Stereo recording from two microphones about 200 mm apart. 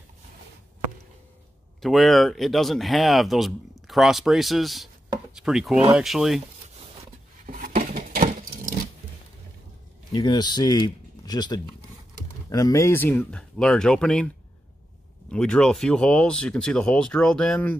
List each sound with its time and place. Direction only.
1.8 s speech: centre (ahead or behind)
7.4 s a sound: 45° right (ahead or behind)
10.1 s speech: 20° left (ahead or behind); by 14.3 s 5° left (ahead or behind)
15.3 s speech: 5° left (ahead or behind)